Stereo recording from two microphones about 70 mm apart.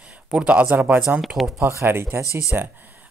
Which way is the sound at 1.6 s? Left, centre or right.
Right.